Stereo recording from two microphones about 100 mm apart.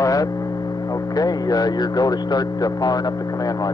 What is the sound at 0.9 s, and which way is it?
Speech, 40° left (ahead or behind).